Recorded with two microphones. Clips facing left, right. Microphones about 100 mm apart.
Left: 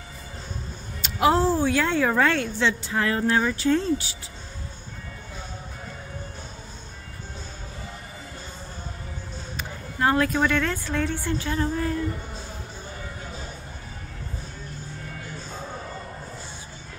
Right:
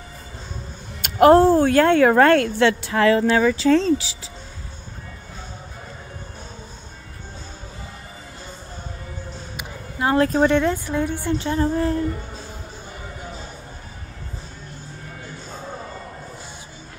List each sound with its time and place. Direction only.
1.0 s speech: 55° right (ahead or behind); by 4.1 s 90° right
9.6 s a sound: 15° right (ahead or behind)
10.1 s speech: 35° right (ahead or behind)
10.5 s a woman's voice: 20° right (ahead or behind); by 12.0 s 35° right (ahead or behind)